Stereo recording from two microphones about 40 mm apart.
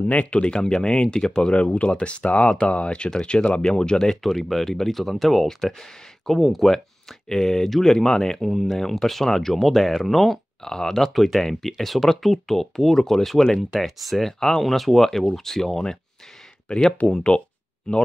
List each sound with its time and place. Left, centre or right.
0.0 s speech: left; by 1.5 s centre
1.5 s speech: left
3.1 s speech: centre
4.2 s speech: centre
7.2 s speech: centre
8.5 s speech: centre
10.6 s speech: centre
17.3 s speech: left